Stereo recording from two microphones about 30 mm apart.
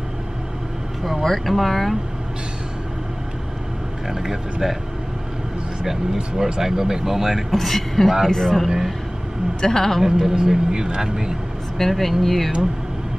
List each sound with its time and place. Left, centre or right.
1.2 s speech: centre
4.1 s speech: centre
6.1 s a man's voice: centre
7.5 s a man's voice: centre
8.6 s speech: centre
9.6 s a man's voice: centre
10.0 s a man's voice: centre
11.9 s speech: centre